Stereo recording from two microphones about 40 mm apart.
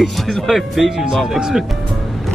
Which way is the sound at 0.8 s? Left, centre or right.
Centre.